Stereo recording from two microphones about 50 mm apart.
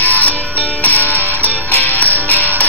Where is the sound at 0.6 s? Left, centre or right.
Right.